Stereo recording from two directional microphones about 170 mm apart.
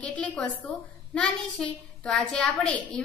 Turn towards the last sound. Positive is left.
turn(degrees=5)  # may be behind; listen again after turning